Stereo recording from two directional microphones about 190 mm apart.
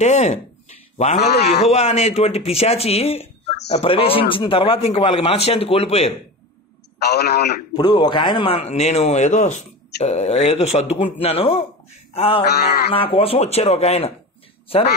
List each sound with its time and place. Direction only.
0.0 s a man's voice: 35° left (ahead or behind)
7.0 s a man's voice: 60° left (ahead or behind)
7.7 s speech: 20° left (ahead or behind)
12.1 s mantra: 30° left (ahead or behind)
12.9 s speech: 30° left (ahead or behind)